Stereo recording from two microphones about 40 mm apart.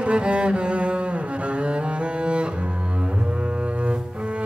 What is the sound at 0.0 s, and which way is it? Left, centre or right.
Cello, right.